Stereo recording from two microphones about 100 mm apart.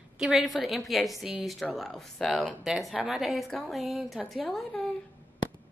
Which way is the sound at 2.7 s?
10° right (ahead or behind).